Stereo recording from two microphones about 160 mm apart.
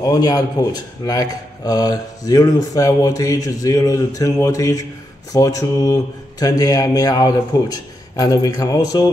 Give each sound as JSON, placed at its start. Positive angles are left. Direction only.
{"t": 0.0, "sound": "speech", "side_deg": 25}